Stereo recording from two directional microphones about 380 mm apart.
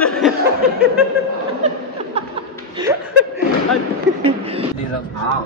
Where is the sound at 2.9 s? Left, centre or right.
Centre.